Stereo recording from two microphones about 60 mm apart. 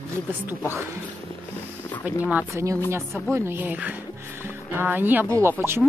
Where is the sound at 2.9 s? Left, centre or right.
Right.